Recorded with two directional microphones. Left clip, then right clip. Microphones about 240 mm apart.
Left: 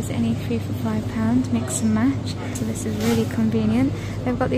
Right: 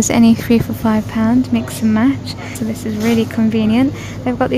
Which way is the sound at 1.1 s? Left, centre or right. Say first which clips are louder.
Right 7 dB; centre.